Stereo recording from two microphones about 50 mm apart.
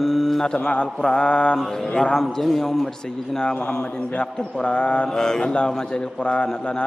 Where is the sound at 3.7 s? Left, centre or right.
Left.